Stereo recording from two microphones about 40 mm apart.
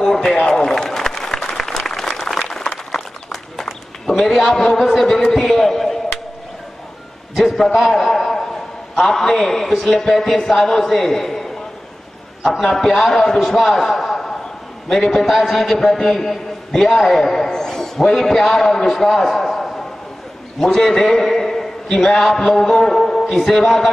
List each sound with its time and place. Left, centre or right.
0.0 s run: centre
0.5 s a sound: centre
1.6 s applause: centre
4.1 s a man's voice: centre
4.5 s a man's voice: centre
4.7 s a man's voice: centre
7.3 s a man's voice: centre
12.7 s a man's voice: centre
15.2 s a man's voice: centre